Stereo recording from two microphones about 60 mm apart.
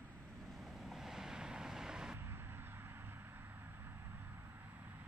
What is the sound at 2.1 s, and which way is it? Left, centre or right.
Vehicle, right.